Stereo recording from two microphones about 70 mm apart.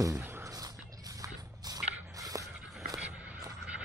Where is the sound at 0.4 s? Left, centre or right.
Right.